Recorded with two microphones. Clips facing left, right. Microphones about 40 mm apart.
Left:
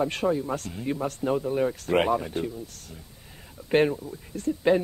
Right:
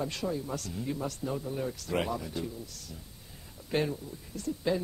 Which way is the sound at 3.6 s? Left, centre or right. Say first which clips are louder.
Left 9 dB; left.